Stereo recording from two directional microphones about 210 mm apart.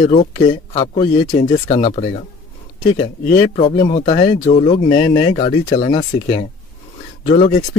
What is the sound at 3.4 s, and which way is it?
Speech, 30° left (ahead or behind).